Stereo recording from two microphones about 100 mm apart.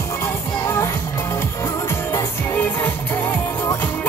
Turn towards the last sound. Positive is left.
turn(degrees=20)  # may be behind; listen again after turning